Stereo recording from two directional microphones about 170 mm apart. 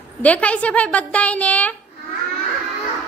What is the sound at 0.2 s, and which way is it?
A woman's voice, 10° left (ahead or behind).